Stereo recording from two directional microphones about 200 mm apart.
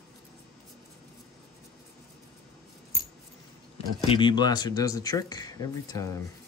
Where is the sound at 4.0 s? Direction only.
25° left (ahead or behind).